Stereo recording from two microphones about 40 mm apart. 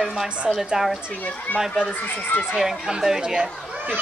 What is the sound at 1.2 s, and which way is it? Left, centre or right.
Speech, left.